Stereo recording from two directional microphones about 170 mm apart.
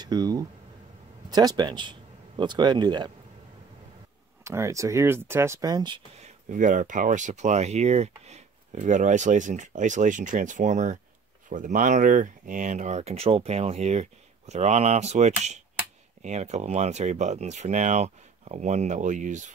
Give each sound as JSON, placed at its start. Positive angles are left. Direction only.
{"t": 0.0, "sound": "speech", "side_deg": -25}
{"t": 4.5, "sound": "speech", "side_deg": -15}
{"t": 6.5, "sound": "speech", "side_deg": -50}